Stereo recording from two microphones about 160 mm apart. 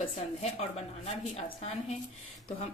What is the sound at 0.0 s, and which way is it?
A woman's voice, 40° left (ahead or behind).